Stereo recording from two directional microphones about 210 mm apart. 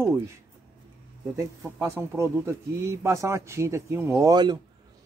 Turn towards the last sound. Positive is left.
turn(degrees=-20)  # may be behind; listen again after turning